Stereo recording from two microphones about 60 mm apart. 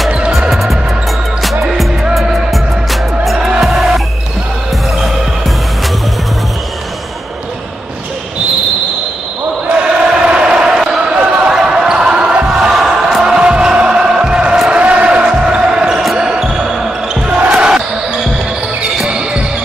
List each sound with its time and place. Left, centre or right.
0.3 s music: centre
2.5 s music: centre
3.3 s music: centre
9.7 s basketball bounce: centre
14.7 s a sound: right
15.0 s basketball bounce: centre
19.0 s basketball bounce: centre